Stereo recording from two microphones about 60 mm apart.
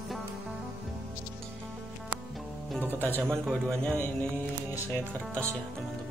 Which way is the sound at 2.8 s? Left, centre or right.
Right.